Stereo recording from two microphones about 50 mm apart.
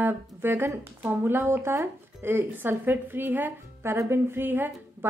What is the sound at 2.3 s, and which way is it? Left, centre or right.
Speech, right.